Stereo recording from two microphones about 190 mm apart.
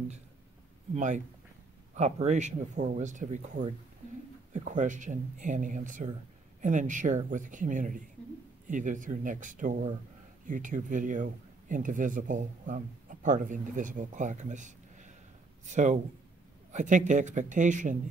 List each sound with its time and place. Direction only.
0.9 s speech: 40° right (ahead or behind)